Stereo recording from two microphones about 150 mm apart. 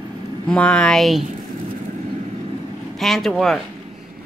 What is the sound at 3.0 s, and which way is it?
Speech, centre (ahead or behind).